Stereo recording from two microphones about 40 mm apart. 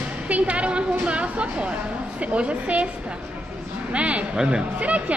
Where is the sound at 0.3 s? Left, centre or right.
Right.